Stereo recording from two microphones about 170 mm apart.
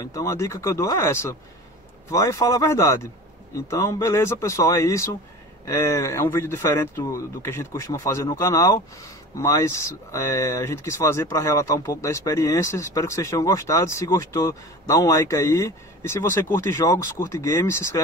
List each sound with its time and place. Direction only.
0.0 s speech: 20° left (ahead or behind)